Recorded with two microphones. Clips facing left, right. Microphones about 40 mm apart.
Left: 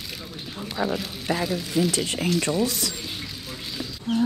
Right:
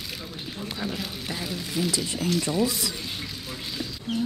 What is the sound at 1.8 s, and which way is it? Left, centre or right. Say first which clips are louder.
Speech: left 3 dB; left.